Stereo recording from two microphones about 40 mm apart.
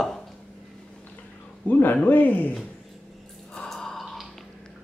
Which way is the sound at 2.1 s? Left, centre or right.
Left.